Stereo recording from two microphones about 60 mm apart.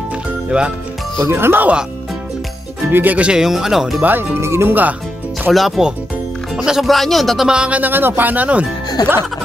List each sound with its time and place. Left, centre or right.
0.5 s speech: centre
1.2 s speech: right
2.9 s speech: right
3.3 s speech: centre
4.0 s speech: right
4.4 s speech: right
5.5 s speech: centre
6.5 s speech: centre
6.9 s speech: centre
7.4 s speech: centre
7.8 s speech: right
9.0 s speech: left